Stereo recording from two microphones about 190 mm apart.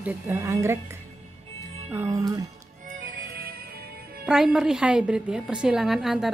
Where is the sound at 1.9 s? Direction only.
15° right (ahead or behind).